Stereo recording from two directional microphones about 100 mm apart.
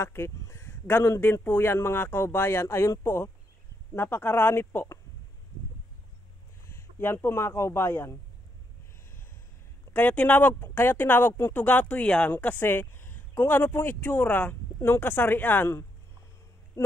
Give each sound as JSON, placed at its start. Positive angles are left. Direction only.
{"t": 0.0, "sound": "a woman's voice", "side_deg": 25}
{"t": 6.6, "sound": "speech", "side_deg": 25}
{"t": 9.9, "sound": "a woman's voice", "side_deg": 15}
{"t": 16.8, "sound": "hoot", "side_deg": 25}